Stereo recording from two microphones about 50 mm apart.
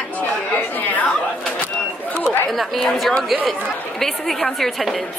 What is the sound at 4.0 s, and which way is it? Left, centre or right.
Speech, centre.